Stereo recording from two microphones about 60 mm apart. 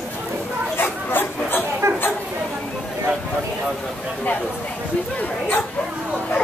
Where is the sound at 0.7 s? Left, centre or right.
Left.